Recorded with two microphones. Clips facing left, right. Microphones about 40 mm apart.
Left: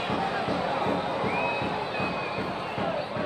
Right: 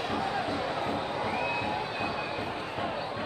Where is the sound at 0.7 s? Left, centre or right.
Left.